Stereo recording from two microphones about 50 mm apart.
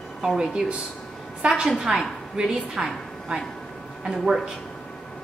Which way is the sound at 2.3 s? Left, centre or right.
Centre.